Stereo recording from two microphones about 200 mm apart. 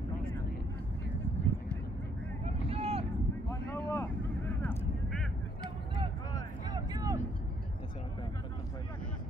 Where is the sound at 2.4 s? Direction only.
30° right (ahead or behind).